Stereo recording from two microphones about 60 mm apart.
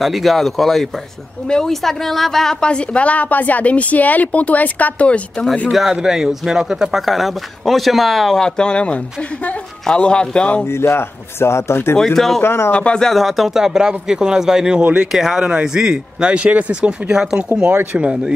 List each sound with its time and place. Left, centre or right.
0.0 s a woman's voice: centre; by 5.5 s left
5.7 s a man's voice: centre
10.6 s speech: left
12.0 s a man's voice: centre
12.4 s speech: left
12.7 s a man's voice: centre
13.1 s a man's voice: centre
14.8 s speech: right
15.0 s a man's voice: centre